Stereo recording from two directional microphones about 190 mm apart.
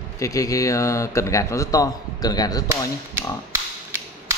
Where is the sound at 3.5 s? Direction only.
15° right (ahead or behind).